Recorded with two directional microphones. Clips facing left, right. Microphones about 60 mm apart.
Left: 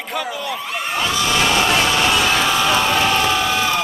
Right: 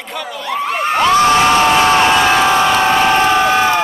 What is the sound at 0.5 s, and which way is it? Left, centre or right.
Crowd, right.